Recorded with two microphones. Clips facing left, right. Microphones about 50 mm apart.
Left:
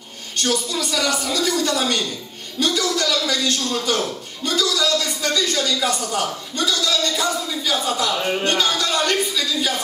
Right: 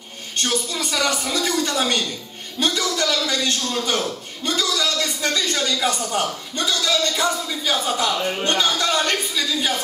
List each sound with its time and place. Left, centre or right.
0.4 s a man's voice: right